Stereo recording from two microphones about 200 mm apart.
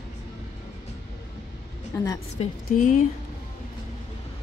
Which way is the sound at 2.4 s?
30° left (ahead or behind).